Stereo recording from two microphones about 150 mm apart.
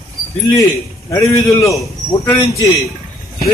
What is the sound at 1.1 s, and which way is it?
A man's voice, 20° left (ahead or behind).